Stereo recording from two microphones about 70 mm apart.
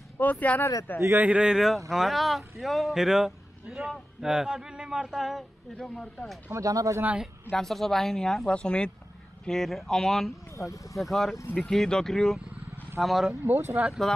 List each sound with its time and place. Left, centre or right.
0.2 s speech: left
1.2 s speech: centre
5.8 s speech: centre
6.5 s speech: right
7.5 s speech: centre
9.5 s speech: centre
10.5 s speech: left
11.0 s speech: centre
12.4 s vehicle: centre
13.0 s speech: centre
13.5 s speech: right